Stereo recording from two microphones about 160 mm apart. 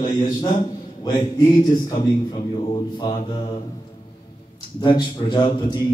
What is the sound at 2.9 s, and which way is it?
Speech, 25° left (ahead or behind).